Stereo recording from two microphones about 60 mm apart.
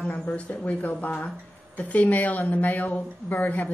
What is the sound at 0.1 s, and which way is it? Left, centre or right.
A woman's voice, left.